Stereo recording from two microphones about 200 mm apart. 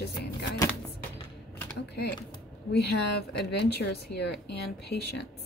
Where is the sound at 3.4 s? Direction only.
55° left (ahead or behind).